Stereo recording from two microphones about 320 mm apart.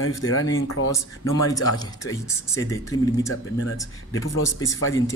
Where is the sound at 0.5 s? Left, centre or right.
Left.